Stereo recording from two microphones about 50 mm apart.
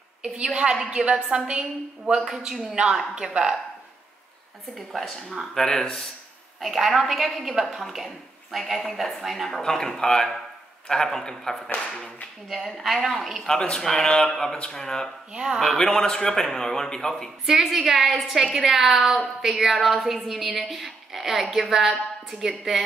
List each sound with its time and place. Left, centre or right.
0.8 s a woman's voice: centre
2.2 s a man's voice: centre
4.7 s a woman's voice: centre
9.6 s a woman's voice: centre
13.5 s speech: centre
15.3 s a man's voice: centre
15.6 s a woman's voice: centre
17.5 s a woman's voice: centre